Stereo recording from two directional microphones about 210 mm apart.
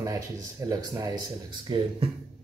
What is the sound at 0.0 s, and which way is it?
Speech, 15° right (ahead or behind).